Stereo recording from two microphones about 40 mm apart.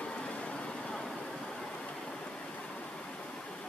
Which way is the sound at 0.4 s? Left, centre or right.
Left.